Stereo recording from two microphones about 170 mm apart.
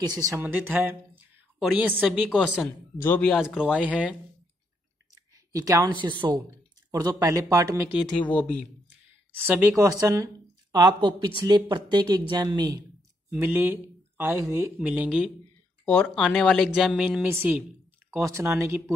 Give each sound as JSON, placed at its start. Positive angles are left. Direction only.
{"t": 0.0, "sound": "speech", "side_deg": -20}
{"t": 3.0, "sound": "speech", "side_deg": 10}
{"t": 3.7, "sound": "speech", "side_deg": -5}
{"t": 5.5, "sound": "speech", "side_deg": -20}
{"t": 8.2, "sound": "speech", "side_deg": 10}
{"t": 9.5, "sound": "speech", "side_deg": -15}
{"t": 13.4, "sound": "speech", "side_deg": -10}